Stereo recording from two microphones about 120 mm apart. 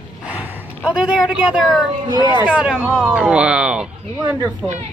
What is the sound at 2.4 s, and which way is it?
Speech, 10° right (ahead or behind).